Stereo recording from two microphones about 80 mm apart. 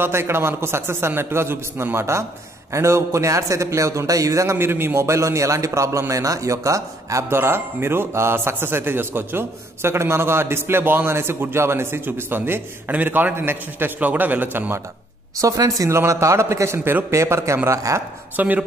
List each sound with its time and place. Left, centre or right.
0.0 s a man's voice: right
15.4 s a man's voice: right
18.3 s a man's voice: right